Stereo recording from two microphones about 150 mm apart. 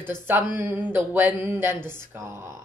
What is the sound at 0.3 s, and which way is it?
A woman's voice, 10° right (ahead or behind).